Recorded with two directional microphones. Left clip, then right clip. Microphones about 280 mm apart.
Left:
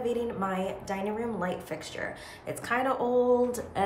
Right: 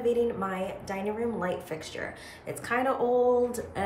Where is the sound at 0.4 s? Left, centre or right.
Centre.